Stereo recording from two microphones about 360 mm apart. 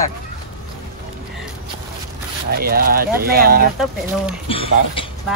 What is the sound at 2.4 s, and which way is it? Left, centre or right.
Speech, right.